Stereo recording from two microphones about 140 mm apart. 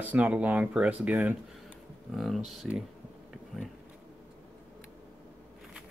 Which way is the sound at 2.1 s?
Centre (ahead or behind).